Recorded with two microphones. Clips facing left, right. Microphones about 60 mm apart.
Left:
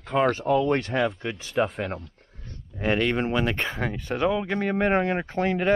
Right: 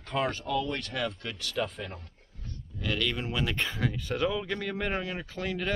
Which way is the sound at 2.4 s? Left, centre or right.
Left.